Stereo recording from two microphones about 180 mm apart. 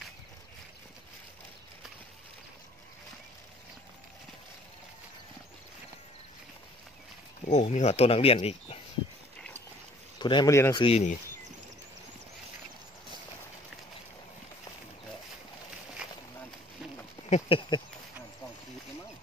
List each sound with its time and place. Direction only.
7.4 s speech: 40° left (ahead or behind)
10.1 s speech: 25° left (ahead or behind)
10.8 s speech: 35° left (ahead or behind)
17.3 s speech: 30° left (ahead or behind)